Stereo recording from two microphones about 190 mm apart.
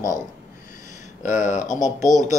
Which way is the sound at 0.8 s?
40° left (ahead or behind).